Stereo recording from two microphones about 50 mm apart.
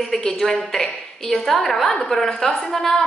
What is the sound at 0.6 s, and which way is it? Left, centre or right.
A woman's voice, centre.